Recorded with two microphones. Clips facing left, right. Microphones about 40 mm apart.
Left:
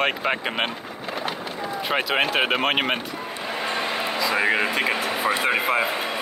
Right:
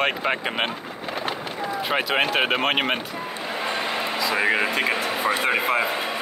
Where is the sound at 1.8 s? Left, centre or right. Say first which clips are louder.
Even; centre.